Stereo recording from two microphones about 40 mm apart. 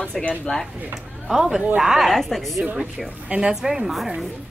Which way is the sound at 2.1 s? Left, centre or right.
Centre.